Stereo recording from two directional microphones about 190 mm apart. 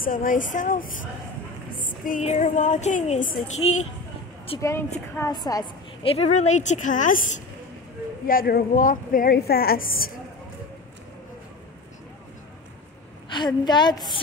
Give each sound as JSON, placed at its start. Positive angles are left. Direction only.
{"t": 0.0, "sound": "a woman's voice", "side_deg": 45}
{"t": 4.6, "sound": "a woman's voice", "side_deg": 15}
{"t": 6.1, "sound": "a woman's voice", "side_deg": 35}
{"t": 13.3, "sound": "a woman's voice", "side_deg": 25}